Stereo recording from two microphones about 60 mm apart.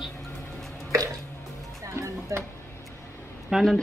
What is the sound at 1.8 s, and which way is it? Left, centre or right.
Music, right.